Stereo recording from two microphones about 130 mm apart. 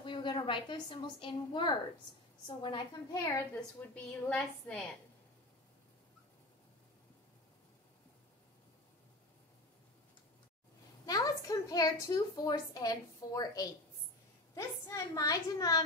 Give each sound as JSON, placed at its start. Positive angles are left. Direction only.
{"t": 0.0, "sound": "a woman's voice", "side_deg": 40}
{"t": 3.8, "sound": "a woman's voice", "side_deg": 10}
{"t": 11.1, "sound": "a woman's voice", "side_deg": 30}